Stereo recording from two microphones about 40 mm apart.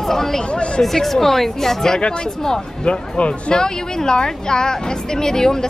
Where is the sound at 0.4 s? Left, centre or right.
Left.